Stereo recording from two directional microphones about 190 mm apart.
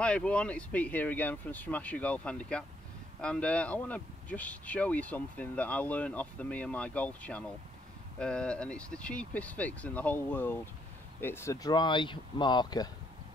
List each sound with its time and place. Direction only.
0.0 s speech: 5° left (ahead or behind); by 12.9 s 20° left (ahead or behind)